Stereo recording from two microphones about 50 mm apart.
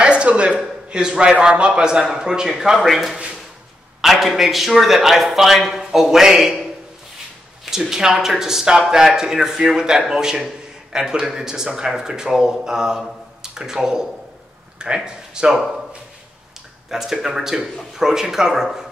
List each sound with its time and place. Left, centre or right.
0.0 s a sound: right
0.8 s a man's voice: centre
7.7 s a man's voice: centre
15.0 s a man's voice: centre
16.9 s a man's voice: centre